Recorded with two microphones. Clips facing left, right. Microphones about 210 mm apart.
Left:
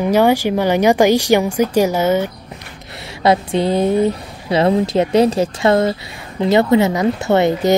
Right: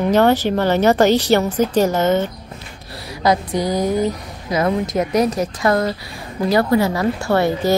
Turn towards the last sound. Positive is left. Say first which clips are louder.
# left 3 dB
turn(degrees=20)  # may be behind; listen again after turning